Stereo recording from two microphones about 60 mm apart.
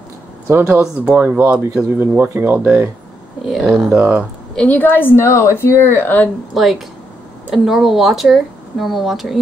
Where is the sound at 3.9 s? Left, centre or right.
Right.